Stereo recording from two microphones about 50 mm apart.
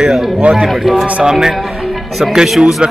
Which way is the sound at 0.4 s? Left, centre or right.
Centre.